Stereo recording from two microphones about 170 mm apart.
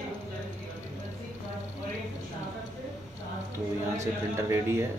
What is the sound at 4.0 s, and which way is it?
Speech, 15° right (ahead or behind).